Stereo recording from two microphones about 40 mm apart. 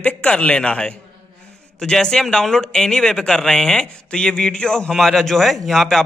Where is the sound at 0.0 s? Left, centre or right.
Left.